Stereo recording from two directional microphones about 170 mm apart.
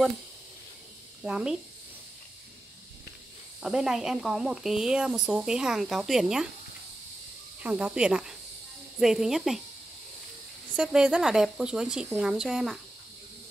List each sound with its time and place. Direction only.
1.2 s speech: 5° right (ahead or behind)
3.6 s speech: 5° right (ahead or behind)
7.6 s speech: 10° right (ahead or behind)
10.8 s speech: 5° right (ahead or behind)